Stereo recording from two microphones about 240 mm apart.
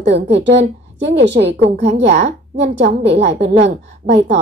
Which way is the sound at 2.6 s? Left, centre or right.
Right.